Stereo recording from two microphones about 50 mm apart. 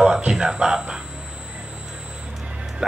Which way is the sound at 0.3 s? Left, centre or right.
Centre.